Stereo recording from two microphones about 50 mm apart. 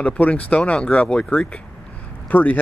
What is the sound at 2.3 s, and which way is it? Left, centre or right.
Speech, left.